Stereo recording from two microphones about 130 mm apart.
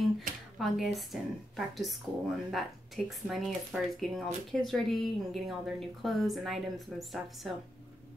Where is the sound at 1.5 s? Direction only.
Centre (ahead or behind).